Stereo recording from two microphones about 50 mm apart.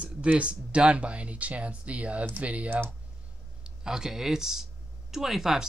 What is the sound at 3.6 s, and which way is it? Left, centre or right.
Speech, centre.